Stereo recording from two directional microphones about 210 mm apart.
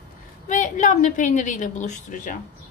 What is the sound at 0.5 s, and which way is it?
A woman's voice, 35° left (ahead or behind).